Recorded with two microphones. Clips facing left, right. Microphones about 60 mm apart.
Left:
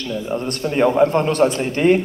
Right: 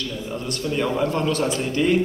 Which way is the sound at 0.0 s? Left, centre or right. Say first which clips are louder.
Left 6 dB; left.